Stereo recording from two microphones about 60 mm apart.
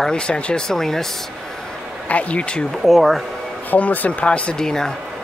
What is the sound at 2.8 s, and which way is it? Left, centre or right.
Speech, centre.